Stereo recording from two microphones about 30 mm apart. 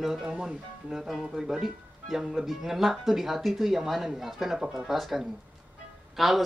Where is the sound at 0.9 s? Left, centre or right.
Centre.